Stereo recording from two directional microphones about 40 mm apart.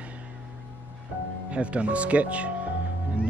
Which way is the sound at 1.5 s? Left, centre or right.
Right.